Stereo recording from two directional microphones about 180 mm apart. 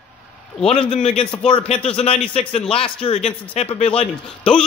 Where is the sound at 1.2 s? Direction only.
30° left (ahead or behind).